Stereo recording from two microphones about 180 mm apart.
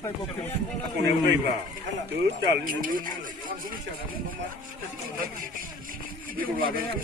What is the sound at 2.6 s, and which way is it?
Speech, 50° right (ahead or behind).